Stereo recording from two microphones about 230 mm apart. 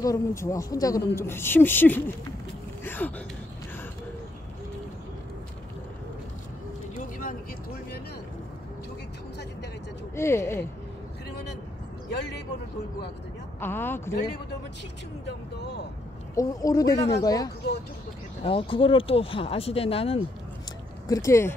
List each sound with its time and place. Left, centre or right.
0.0 s speech: centre
2.8 s a sound: centre
7.0 s vehicle: left
10.1 s speech: centre
13.6 s speech: centre
15.2 s speech: left
16.3 s speech: centre
21.1 s speech: centre